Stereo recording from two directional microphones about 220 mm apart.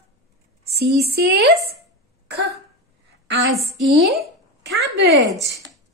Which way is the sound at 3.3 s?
55° right (ahead or behind).